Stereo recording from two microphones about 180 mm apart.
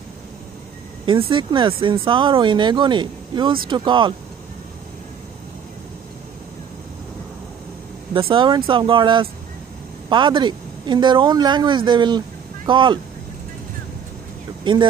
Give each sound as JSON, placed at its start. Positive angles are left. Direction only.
{"t": 1.0, "sound": "speech", "side_deg": -25}
{"t": 8.1, "sound": "speech", "side_deg": -30}
{"t": 14.6, "sound": "speech", "side_deg": -25}